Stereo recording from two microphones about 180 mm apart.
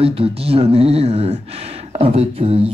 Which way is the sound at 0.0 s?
30° right (ahead or behind).